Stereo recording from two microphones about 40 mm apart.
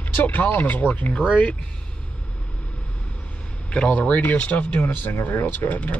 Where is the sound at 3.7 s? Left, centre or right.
Left.